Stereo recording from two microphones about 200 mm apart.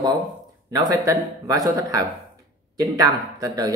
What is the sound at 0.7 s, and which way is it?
Speech, 20° right (ahead or behind).